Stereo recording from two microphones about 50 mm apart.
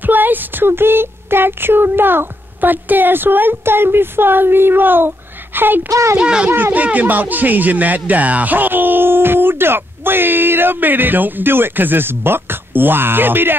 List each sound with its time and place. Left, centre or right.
0.0 s a sound: right
6.1 s a child's voice: centre
6.5 s speech: right